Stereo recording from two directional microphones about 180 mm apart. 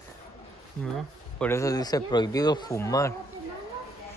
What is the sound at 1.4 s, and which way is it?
A man's voice, 15° left (ahead or behind).